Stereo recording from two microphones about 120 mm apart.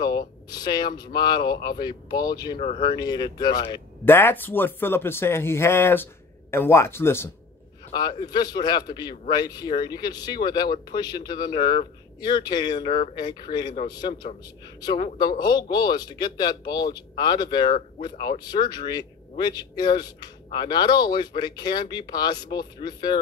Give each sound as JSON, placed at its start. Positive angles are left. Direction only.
{"t": 0.0, "sound": "speech", "side_deg": 35}
{"t": 4.0, "sound": "speech", "side_deg": 15}
{"t": 7.9, "sound": "speech", "side_deg": 40}
{"t": 15.1, "sound": "speech", "side_deg": 35}